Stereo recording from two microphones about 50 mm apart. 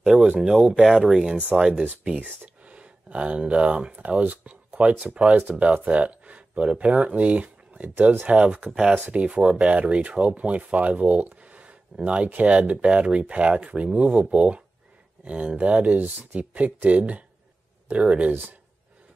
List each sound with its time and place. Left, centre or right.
0.0 s speech: centre; by 18.6 s right